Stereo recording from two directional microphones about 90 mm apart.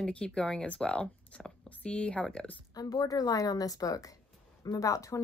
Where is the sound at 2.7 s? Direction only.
45° left (ahead or behind).